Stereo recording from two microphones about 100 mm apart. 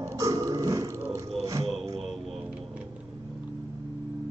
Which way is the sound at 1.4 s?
35° right (ahead or behind).